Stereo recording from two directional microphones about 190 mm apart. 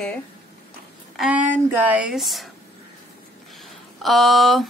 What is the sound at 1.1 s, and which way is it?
Speech, 5° right (ahead or behind).